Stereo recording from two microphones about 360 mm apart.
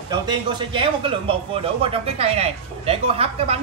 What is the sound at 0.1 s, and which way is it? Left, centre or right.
Speech, centre.